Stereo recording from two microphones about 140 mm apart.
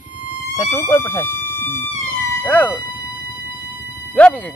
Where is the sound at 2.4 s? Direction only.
10° left (ahead or behind).